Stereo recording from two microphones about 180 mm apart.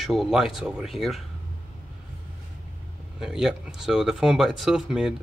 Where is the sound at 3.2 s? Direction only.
Centre (ahead or behind).